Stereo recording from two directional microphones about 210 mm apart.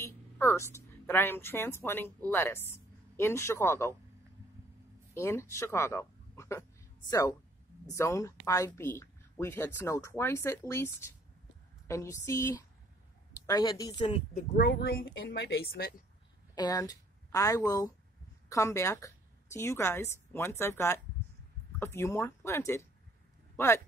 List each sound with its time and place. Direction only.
0.0 s a woman's voice: 10° left (ahead or behind)
5.1 s speech: 10° left (ahead or behind)
14.3 s speech: 45° left (ahead or behind)
16.5 s a woman's voice: 15° left (ahead or behind)